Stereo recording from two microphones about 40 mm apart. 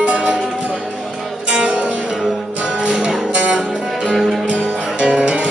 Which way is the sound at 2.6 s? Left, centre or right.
Right.